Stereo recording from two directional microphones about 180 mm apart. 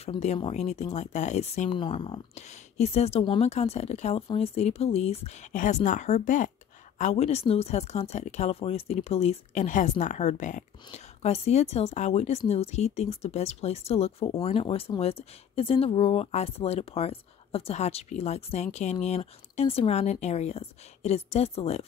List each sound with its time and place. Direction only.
0.0 s speech: 35° left (ahead or behind)